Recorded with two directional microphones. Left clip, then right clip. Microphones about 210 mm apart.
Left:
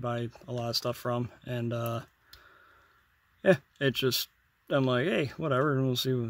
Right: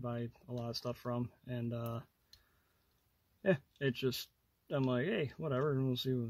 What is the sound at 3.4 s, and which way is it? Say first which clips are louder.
Speech: left 9 dB; 35° left (ahead or behind).